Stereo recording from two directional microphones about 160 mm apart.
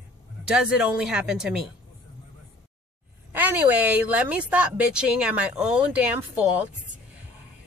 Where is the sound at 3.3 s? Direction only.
10° right (ahead or behind).